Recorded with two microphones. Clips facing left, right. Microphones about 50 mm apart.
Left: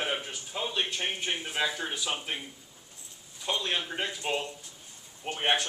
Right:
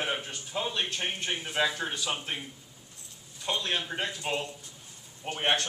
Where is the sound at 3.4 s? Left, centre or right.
Centre.